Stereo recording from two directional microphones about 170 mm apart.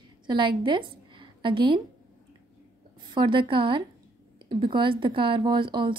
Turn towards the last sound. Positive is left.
turn(degrees=-30)  # may be behind; listen again after turning